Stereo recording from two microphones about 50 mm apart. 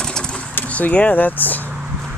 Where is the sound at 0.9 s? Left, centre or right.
Left.